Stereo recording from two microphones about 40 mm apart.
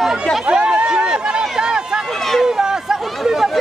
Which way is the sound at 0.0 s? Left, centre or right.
Centre.